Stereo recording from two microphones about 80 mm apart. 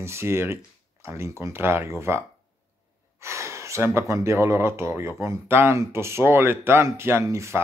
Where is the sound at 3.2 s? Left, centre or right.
Right.